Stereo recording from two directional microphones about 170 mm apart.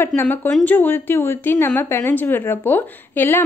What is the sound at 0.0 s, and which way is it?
A woman's voice, 10° left (ahead or behind).